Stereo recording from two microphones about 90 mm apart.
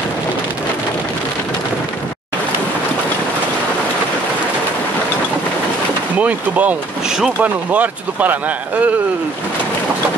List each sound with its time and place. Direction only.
6.1 s speech: 15° right (ahead or behind)
7.4 s speech: 15° right (ahead or behind)